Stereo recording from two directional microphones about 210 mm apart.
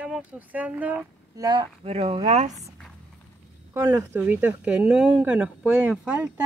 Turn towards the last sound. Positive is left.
turn(degrees=-5)  # may be behind; listen again after turning